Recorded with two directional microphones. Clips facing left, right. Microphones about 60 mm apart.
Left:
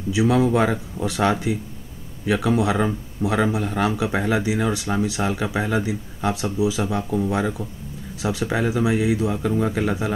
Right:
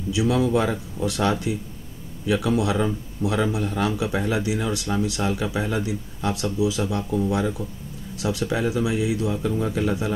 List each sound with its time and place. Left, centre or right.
0.1 s speech: left